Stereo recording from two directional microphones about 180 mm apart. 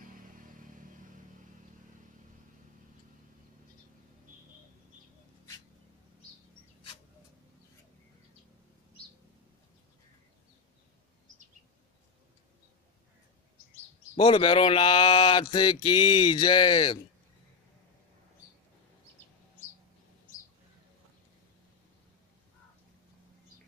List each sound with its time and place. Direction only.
0.0 s vehicle: 50° right (ahead or behind)
14.1 s speech: 30° left (ahead or behind)